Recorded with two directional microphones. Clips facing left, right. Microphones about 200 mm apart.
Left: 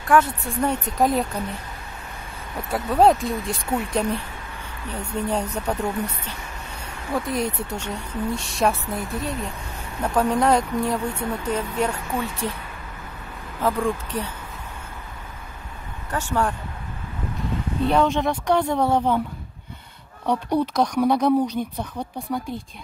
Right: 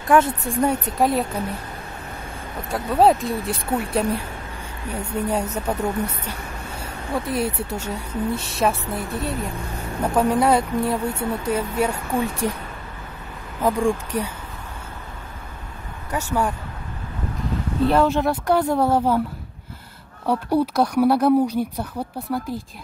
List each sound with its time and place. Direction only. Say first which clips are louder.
0.1 s speech: right 2 dB; 20° right (ahead or behind)
0.9 s speech: left 1 dB; 5° right (ahead or behind)
2.7 s speech: even; centre (ahead or behind)
6.8 s speech: even; 5° right (ahead or behind)
13.6 s speech: right 3 dB; 10° right (ahead or behind)
16.1 s speech: right 1 dB; 10° right (ahead or behind)
17.8 s speech: right 2 dB; 5° right (ahead or behind)
20.2 s speech: right 2 dB; 10° right (ahead or behind)